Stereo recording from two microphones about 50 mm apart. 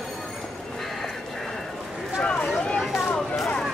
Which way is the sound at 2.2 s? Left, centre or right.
Centre.